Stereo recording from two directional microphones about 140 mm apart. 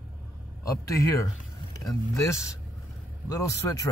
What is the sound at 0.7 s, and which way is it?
Speech, 20° left (ahead or behind).